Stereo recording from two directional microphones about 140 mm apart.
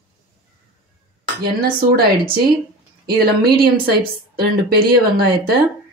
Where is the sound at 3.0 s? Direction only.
90° right.